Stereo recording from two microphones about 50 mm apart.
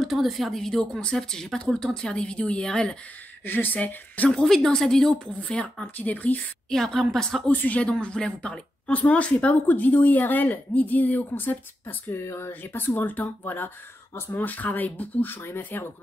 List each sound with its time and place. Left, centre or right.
0.0 s a woman's voice: centre
3.4 s speech: left
4.3 s a woman's voice: centre
5.5 s speech: left
5.9 s speech: left
6.7 s a woman's voice: centre
7.5 s speech: left
8.0 s speech: centre; by 11.5 s left
12.1 s speech: left